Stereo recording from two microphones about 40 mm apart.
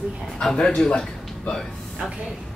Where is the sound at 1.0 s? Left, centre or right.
Centre.